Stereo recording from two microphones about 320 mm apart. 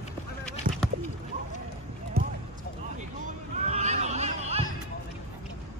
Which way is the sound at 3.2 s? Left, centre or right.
Right.